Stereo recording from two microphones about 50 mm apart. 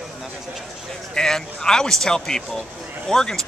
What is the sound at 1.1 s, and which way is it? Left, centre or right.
A man's voice, centre.